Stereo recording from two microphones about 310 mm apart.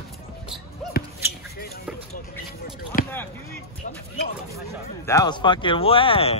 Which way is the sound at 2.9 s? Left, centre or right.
Left.